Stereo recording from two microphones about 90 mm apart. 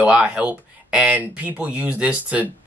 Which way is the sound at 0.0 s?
15° right (ahead or behind).